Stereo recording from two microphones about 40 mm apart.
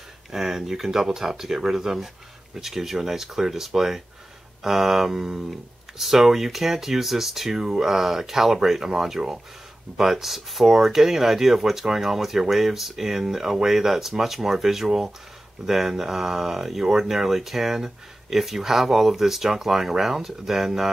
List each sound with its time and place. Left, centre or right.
0.3 s speech: centre